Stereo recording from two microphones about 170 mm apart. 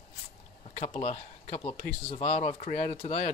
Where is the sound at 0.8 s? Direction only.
40° left (ahead or behind).